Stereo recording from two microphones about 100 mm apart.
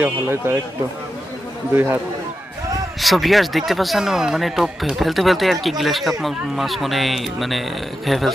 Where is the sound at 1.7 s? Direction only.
20° right (ahead or behind).